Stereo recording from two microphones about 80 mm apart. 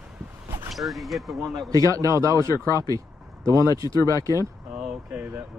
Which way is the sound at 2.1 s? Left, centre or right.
Right.